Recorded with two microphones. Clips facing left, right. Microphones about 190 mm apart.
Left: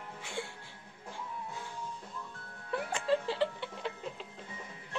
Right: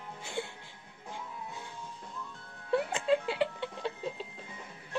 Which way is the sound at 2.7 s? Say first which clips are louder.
Right 3 dB; 20° right (ahead or behind).